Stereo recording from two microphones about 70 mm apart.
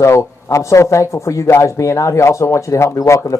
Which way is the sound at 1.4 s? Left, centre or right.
Left.